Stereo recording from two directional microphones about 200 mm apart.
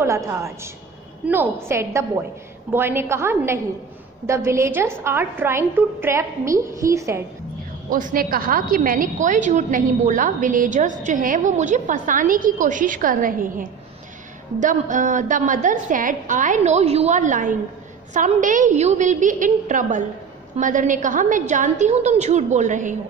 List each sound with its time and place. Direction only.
0.0 s a woman's voice: 15° right (ahead or behind)
7.9 s a woman's voice: 45° right (ahead or behind)